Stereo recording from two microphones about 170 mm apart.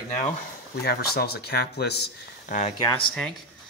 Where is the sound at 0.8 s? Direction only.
65° left (ahead or behind).